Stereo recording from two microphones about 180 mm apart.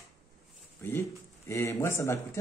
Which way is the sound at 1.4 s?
15° left (ahead or behind).